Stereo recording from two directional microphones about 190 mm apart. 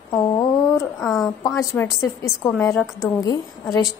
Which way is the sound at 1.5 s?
15° left (ahead or behind).